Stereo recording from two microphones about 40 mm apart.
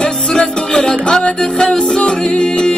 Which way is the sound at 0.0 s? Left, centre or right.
Centre.